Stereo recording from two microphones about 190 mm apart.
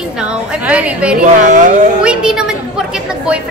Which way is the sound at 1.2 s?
40° right (ahead or behind).